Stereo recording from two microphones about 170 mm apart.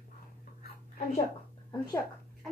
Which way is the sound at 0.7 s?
65° left (ahead or behind).